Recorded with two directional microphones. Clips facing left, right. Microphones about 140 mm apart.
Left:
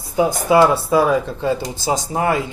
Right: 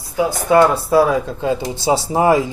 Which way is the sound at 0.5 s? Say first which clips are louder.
Right 2 dB; 5° left (ahead or behind).